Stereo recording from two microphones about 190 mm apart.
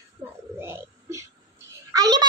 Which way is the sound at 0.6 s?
10° right (ahead or behind).